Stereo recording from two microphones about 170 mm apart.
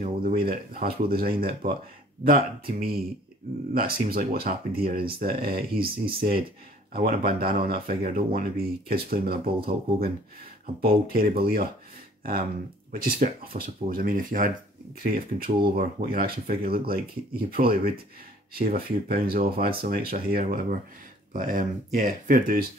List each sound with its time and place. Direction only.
0.0 s speech: 60° right (ahead or behind)